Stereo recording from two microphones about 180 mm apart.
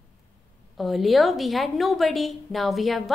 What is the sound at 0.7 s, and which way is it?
A woman's voice, centre (ahead or behind).